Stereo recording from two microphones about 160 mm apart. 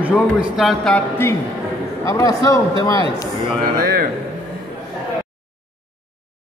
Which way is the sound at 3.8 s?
75° right (ahead or behind).